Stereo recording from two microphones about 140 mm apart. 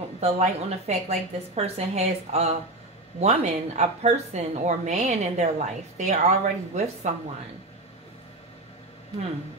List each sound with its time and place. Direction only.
0.2 s a woman's voice: 50° right (ahead or behind)